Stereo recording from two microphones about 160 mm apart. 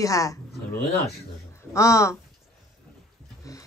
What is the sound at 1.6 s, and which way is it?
Speech, 20° left (ahead or behind).